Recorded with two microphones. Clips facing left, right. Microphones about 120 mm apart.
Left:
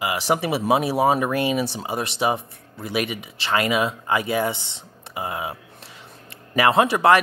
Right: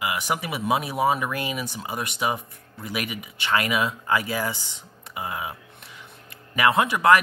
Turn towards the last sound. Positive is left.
turn(degrees=30)  # may be behind; listen again after turning